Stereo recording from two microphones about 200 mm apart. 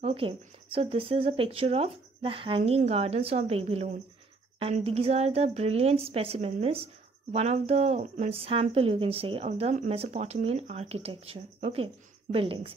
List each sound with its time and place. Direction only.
0.0 s speech: 30° right (ahead or behind)